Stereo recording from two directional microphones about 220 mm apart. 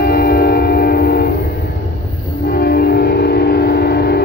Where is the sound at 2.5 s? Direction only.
45° left (ahead or behind).